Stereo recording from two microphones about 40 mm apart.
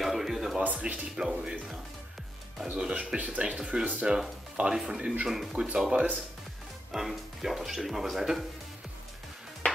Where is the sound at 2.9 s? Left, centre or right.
Right.